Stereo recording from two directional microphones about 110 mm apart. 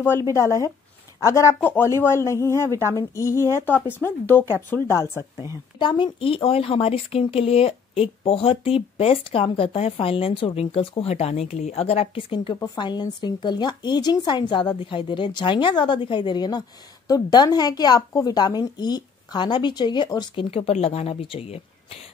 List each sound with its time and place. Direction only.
0.2 s speech: 30° left (ahead or behind)
2.7 s speech: 30° right (ahead or behind)
3.0 s speech: 25° left (ahead or behind)
5.8 s speech: 45° left (ahead or behind)
12.7 s a woman's voice: 40° left (ahead or behind)
20.5 s speech: 65° left (ahead or behind)